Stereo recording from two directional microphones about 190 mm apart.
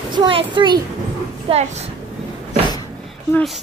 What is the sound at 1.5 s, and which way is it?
Speech, 35° right (ahead or behind).